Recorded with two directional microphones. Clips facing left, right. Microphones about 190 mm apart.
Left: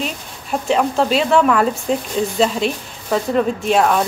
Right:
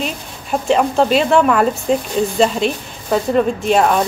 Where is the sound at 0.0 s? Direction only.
Centre (ahead or behind).